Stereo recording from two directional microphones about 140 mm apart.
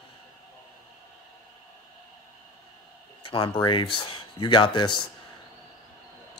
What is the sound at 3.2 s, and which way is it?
Speech, 35° left (ahead or behind).